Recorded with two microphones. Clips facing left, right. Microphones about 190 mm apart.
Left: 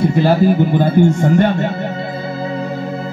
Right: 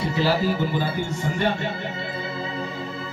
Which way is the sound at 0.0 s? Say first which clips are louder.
Left 9 dB; 50° left (ahead or behind).